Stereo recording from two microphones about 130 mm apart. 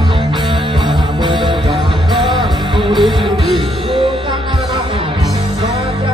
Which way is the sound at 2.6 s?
40° right (ahead or behind).